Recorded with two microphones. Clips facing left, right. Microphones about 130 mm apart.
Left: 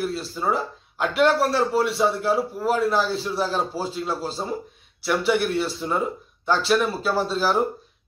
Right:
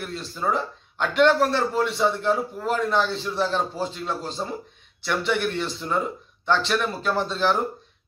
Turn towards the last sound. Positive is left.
turn(degrees=5)  # may be behind; listen again after turning